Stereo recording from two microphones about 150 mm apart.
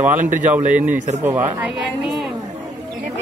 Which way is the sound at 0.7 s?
10° right (ahead or behind).